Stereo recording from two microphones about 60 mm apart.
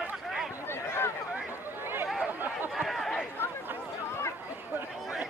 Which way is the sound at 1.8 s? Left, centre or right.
Right.